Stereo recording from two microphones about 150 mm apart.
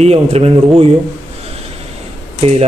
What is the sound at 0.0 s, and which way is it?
Speech, 45° right (ahead or behind).